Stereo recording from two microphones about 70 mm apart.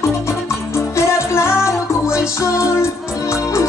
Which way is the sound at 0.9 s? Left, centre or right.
Left.